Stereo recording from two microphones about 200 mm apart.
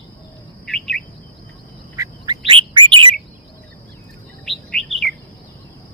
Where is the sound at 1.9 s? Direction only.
15° right (ahead or behind).